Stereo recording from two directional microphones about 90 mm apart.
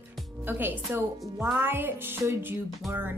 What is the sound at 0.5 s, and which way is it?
A woman's voice, 20° right (ahead or behind).